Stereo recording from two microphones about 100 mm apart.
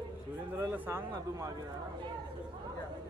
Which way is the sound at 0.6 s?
20° right (ahead or behind).